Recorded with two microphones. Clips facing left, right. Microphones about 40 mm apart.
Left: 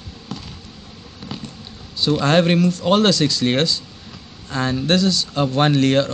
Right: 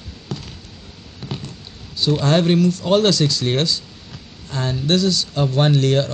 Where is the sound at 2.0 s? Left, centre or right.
Left.